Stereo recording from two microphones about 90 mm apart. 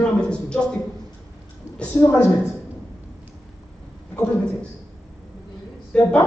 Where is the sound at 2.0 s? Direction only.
15° left (ahead or behind).